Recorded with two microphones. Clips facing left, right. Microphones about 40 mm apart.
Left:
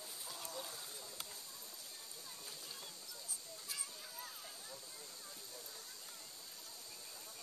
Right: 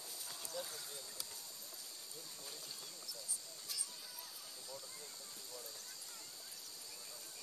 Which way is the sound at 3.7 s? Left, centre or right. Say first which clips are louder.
Left 1 dB; left.